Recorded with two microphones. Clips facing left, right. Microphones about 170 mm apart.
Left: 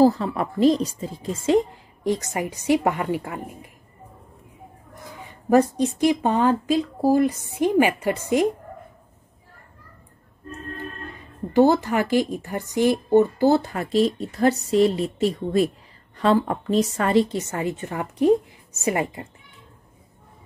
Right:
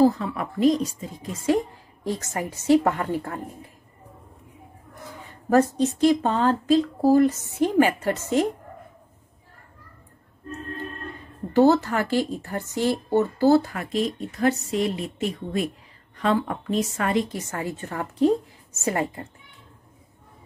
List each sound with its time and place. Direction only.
0.0 s a woman's voice: 35° left (ahead or behind); by 3.5 s 15° left (ahead or behind)
5.5 s speech: 15° left (ahead or behind)
11.5 s a woman's voice: 15° left (ahead or behind)